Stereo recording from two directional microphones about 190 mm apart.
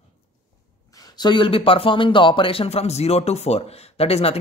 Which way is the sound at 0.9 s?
20° left (ahead or behind).